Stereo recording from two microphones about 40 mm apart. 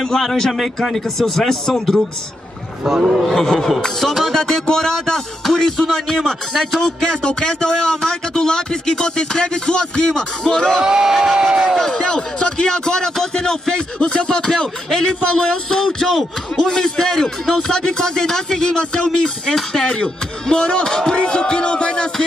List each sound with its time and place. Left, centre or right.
0.0 s a man's voice: centre
2.8 s speech: centre
3.2 s music: centre
3.4 s a man's voice: centre
3.8 s music: centre
4.4 s a man's voice: centre
10.8 s speech: centre
11.9 s a man's voice: centre